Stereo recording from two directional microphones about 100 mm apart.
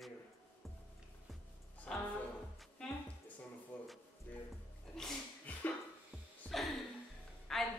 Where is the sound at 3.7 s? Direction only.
15° left (ahead or behind).